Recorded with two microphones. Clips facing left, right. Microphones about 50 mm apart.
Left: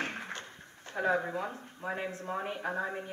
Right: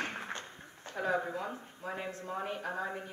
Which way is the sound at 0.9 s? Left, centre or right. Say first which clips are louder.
Left 3 dB; left.